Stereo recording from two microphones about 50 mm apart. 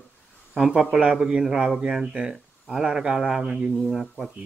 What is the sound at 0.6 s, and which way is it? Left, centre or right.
Speech, centre.